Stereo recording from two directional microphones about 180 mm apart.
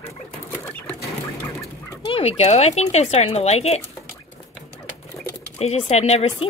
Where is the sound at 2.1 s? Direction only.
35° left (ahead or behind).